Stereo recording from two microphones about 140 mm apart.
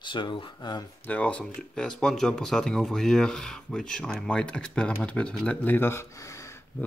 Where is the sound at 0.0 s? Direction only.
35° left (ahead or behind).